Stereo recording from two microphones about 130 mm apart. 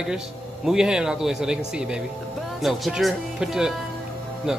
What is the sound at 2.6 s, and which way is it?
Speech, centre (ahead or behind).